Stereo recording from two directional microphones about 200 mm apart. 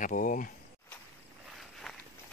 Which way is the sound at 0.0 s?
40° left (ahead or behind).